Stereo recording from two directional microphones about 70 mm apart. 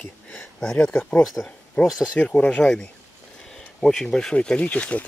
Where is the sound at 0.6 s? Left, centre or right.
Centre.